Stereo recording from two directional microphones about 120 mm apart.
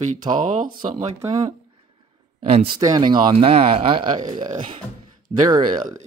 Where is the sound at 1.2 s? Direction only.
35° right (ahead or behind).